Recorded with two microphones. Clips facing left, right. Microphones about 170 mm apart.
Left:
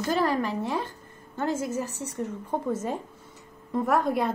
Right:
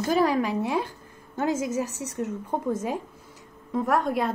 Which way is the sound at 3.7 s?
Centre (ahead or behind).